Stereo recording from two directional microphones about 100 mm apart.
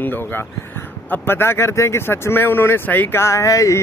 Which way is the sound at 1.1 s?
25° left (ahead or behind).